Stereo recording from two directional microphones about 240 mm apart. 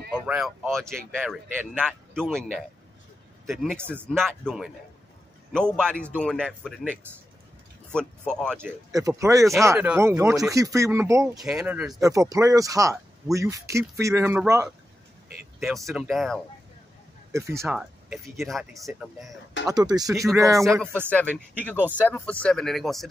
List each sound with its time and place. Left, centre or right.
0.1 s speech: centre
3.4 s speech: centre
8.3 s speech: centre
8.5 s speech: centre
17.3 s speech: centre
17.7 s speech: centre
19.6 s speech: centre
21.8 s speech: centre